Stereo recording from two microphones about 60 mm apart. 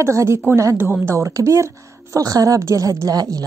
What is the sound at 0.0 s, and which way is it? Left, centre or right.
A woman's voice, right.